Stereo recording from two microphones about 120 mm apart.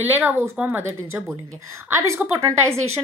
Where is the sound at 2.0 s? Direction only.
25° right (ahead or behind).